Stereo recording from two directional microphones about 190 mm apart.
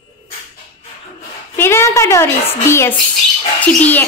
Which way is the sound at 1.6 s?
15° left (ahead or behind).